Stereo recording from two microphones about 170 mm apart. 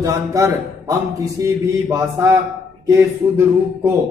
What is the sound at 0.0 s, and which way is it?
A man's voice, 20° right (ahead or behind).